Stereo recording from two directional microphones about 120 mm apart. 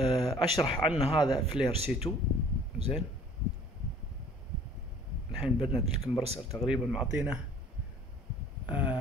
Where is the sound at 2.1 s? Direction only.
20° left (ahead or behind).